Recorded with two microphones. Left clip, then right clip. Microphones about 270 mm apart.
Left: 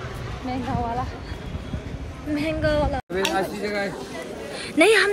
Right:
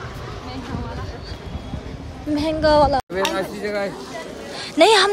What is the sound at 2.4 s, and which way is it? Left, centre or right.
Speech, centre.